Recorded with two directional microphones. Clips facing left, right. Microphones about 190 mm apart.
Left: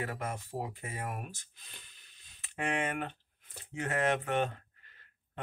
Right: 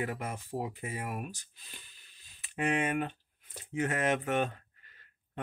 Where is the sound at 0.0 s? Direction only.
15° right (ahead or behind).